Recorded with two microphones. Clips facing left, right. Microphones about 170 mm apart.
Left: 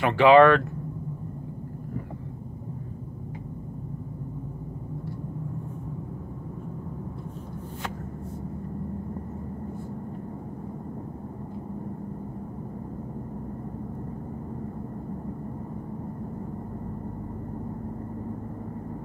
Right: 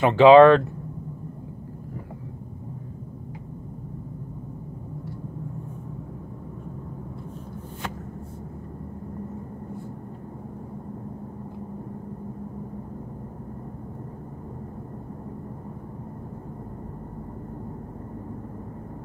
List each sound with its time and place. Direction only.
0.0 s speech: 20° right (ahead or behind)